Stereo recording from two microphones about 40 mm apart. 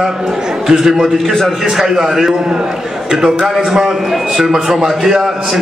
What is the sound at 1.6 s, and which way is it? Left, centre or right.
A man's voice, centre.